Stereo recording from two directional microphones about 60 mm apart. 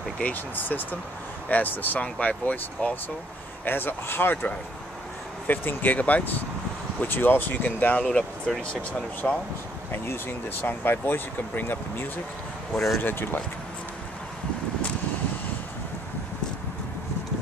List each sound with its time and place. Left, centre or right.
0.2 s speech: left
9.2 s speech: left
10.0 s speech: left
12.7 s speech: centre
13.0 s speech: left